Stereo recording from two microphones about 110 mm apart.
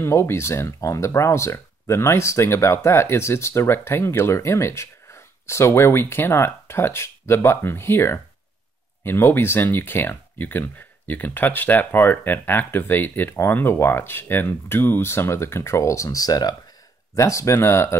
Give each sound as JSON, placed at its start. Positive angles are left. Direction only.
{"t": 0.0, "sound": "speech", "side_deg": 25}